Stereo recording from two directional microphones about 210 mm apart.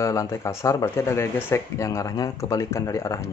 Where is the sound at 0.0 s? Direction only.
15° left (ahead or behind).